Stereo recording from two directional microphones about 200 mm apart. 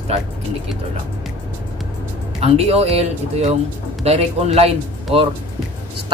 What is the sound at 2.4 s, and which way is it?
A woman's voice, 30° right (ahead or behind).